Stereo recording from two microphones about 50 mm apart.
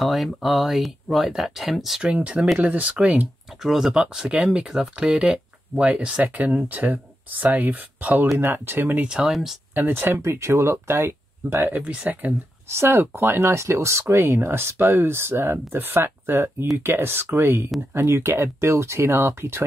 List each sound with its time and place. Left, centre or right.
0.0 s speech: centre
2.1 s speech: right
3.6 s speech: centre
4.0 s speech: centre; by 9.0 s right
9.0 s speech: centre
9.8 s speech: right
10.2 s speech: right
11.6 s speech: right
12.6 s speech: right